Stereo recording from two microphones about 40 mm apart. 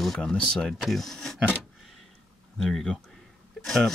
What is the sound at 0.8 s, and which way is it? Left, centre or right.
Speech, centre.